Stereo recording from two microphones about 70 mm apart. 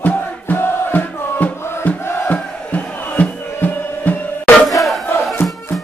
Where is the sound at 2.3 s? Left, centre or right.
Left.